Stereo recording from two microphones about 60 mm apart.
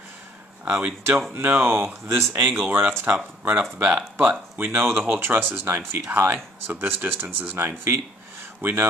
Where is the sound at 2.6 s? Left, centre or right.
Right.